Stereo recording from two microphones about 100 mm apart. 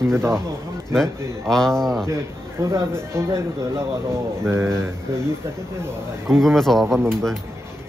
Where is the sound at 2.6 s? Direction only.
30° right (ahead or behind).